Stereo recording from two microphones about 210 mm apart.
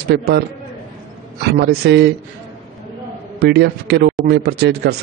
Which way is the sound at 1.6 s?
50° right (ahead or behind).